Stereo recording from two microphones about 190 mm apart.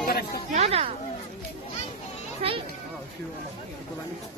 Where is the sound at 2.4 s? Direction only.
30° right (ahead or behind).